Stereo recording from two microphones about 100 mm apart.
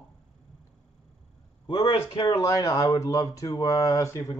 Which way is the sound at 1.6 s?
50° left (ahead or behind).